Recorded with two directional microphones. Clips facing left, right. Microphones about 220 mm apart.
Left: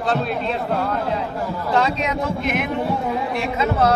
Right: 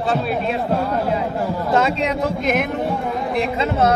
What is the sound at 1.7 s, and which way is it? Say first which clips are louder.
Speech: right 1 dB; 35° right (ahead or behind).